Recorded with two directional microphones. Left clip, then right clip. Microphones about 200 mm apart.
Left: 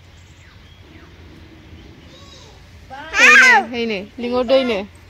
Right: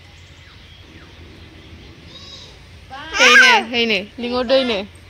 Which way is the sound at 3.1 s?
15° left (ahead or behind).